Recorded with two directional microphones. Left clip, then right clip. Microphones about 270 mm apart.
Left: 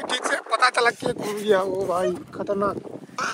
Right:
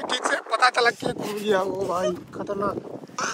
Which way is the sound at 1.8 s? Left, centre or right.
Left.